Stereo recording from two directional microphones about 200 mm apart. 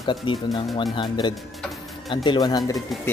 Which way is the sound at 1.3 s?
Centre (ahead or behind).